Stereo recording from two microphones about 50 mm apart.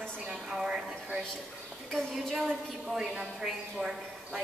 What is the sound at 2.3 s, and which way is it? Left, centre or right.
A woman's voice, centre.